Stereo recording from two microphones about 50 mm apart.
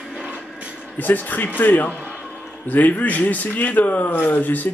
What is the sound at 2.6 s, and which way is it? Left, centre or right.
Speech, left.